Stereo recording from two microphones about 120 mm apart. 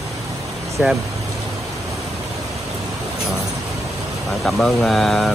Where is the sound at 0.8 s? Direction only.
15° right (ahead or behind).